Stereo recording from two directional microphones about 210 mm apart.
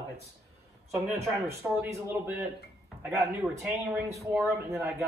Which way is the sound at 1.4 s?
10° right (ahead or behind).